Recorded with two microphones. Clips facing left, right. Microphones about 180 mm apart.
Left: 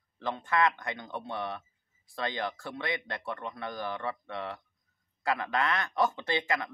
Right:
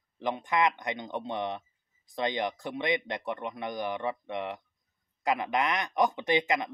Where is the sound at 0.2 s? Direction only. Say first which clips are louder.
Right 1 dB; 15° right (ahead or behind).